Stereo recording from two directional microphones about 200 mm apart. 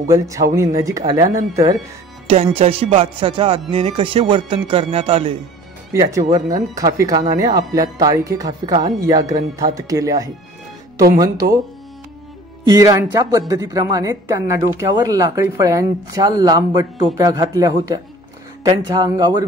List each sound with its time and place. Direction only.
0.1 s a woman's voice: 15° right (ahead or behind)
2.2 s speech: 30° right (ahead or behind)
5.9 s a woman's voice: 15° right (ahead or behind)
12.6 s a woman's voice: 15° right (ahead or behind)